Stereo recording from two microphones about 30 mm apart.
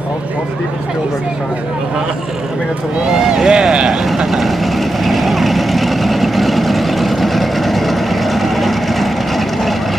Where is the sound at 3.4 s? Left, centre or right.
Right.